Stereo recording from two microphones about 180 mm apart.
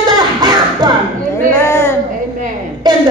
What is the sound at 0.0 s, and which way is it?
Music, 25° right (ahead or behind).